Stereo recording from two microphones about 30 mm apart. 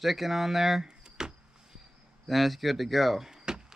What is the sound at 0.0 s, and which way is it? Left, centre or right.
Speech, centre.